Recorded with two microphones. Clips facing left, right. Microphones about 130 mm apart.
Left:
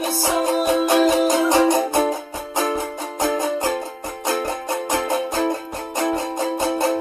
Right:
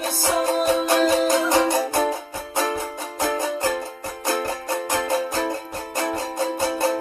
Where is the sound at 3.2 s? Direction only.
20° left (ahead or behind).